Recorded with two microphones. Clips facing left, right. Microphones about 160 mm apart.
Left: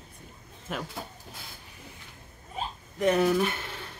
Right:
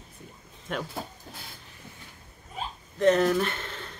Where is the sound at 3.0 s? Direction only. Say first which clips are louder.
Right 2 dB; 10° left (ahead or behind).